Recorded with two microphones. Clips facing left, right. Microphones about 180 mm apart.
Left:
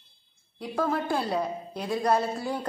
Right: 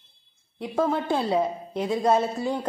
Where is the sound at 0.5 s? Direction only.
25° right (ahead or behind).